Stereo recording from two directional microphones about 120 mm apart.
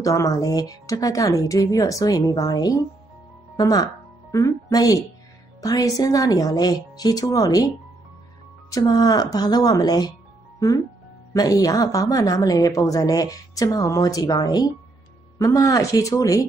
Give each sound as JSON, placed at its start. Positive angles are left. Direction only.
{"t": 0.0, "sound": "a woman's voice", "side_deg": 25}
{"t": 8.7, "sound": "a woman's voice", "side_deg": 30}
{"t": 11.3, "sound": "a woman's voice", "side_deg": 30}